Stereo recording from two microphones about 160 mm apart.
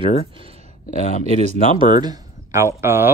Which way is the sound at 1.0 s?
50° left (ahead or behind).